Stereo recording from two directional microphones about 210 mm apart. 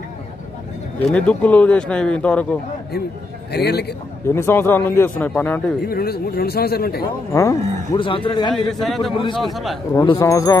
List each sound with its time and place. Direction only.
1.0 s speech: 5° left (ahead or behind)
3.5 s speech: 50° left (ahead or behind)
4.3 s speech: 10° left (ahead or behind)
5.9 s speech: 45° left (ahead or behind)
7.3 s speech: 15° left (ahead or behind)
8.6 s speech: centre (ahead or behind)
9.9 s speech: 15° left (ahead or behind)